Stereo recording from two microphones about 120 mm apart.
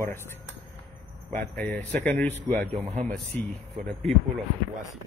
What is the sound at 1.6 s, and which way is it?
Speech, 15° left (ahead or behind).